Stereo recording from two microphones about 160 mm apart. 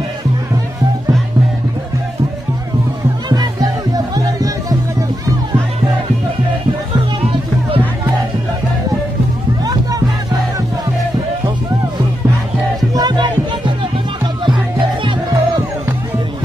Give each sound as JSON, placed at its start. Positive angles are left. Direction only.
{"t": 3.9, "sound": "music", "side_deg": -25}
{"t": 12.9, "sound": "music", "side_deg": -25}